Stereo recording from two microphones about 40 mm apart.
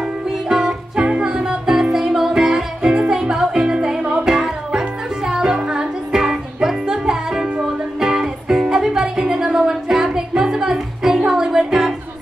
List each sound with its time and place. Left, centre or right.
0.5 s music: centre
2.4 s music: right